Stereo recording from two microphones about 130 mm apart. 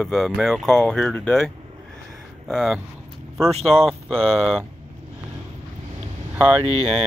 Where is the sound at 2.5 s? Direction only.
Centre (ahead or behind).